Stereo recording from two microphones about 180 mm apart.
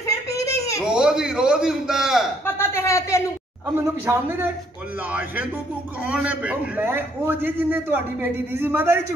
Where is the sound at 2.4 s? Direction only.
15° left (ahead or behind).